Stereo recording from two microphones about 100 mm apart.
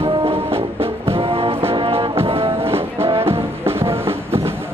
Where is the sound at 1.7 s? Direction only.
70° right (ahead or behind).